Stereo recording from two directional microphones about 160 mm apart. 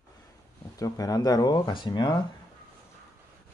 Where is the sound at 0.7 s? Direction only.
20° left (ahead or behind).